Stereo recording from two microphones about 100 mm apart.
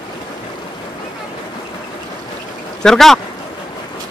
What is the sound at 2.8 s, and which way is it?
Speech, 5° left (ahead or behind).